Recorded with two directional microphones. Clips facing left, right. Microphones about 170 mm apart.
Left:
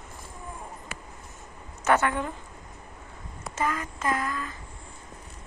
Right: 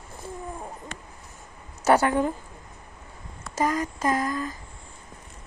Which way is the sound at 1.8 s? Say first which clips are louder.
Right 4 dB; 35° right (ahead or behind).